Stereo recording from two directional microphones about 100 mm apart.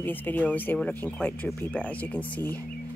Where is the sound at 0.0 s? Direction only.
20° left (ahead or behind).